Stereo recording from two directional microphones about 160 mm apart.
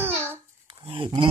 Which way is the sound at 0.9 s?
30° right (ahead or behind).